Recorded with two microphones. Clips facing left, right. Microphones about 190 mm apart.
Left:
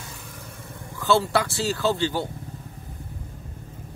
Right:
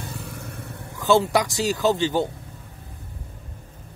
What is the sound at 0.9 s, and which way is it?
Speech, 15° right (ahead or behind).